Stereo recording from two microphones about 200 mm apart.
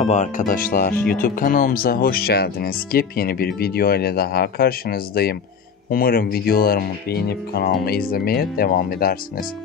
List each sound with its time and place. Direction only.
0.0 s speech: 35° left (ahead or behind)